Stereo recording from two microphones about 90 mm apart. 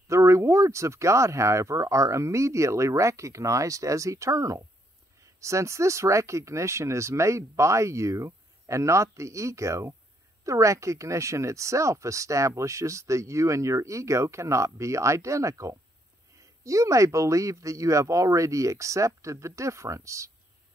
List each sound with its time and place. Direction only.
0.1 s speech: 35° right (ahead or behind)